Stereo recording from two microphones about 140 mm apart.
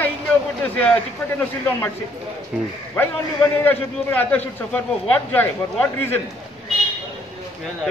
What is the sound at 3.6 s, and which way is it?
A man's voice, 10° left (ahead or behind).